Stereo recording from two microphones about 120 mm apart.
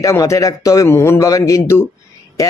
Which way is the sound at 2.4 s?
25° left (ahead or behind).